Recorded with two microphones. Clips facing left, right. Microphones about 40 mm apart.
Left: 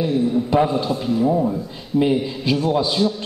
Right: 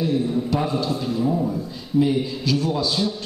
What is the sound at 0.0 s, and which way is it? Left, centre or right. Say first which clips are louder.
A man's voice: left 3 dB; left.